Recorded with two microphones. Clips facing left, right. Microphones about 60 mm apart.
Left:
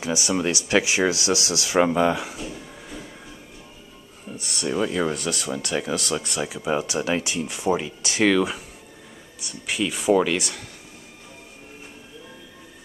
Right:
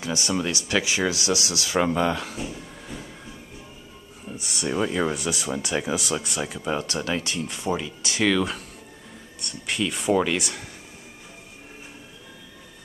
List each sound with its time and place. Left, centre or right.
0.0 s speech: centre
1.8 s speech: centre
2.5 s a sound: centre
4.3 s speech: centre; by 8.3 s left
8.3 s speech: centre